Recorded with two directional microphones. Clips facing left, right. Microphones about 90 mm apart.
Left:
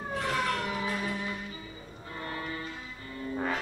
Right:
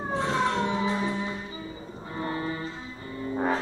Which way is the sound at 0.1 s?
25° right (ahead or behind).